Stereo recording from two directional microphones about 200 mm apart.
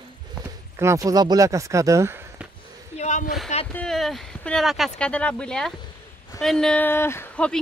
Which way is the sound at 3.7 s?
5° left (ahead or behind).